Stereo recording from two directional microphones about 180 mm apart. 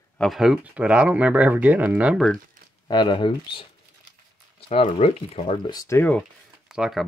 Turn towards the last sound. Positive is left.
turn(degrees=-5)  # may be behind; listen again after turning